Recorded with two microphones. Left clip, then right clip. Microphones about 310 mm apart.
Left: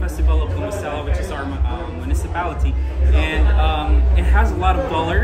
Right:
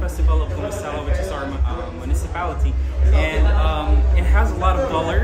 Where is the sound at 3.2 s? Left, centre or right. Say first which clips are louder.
Even; centre.